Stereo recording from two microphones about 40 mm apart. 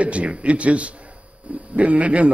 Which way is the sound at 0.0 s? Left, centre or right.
Right.